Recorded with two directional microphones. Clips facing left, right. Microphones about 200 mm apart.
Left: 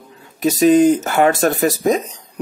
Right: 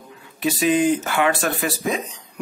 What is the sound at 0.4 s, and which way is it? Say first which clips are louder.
Speech: left 7 dB; 40° left (ahead or behind).